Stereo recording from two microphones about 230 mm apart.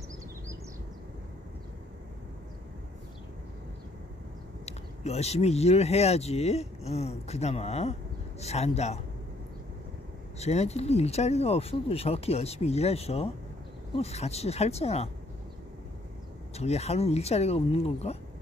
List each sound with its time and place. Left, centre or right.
4.6 s speech: left
10.4 s speech: left
16.5 s speech: left